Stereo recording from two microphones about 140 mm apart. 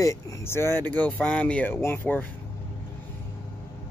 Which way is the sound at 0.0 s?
20° left (ahead or behind).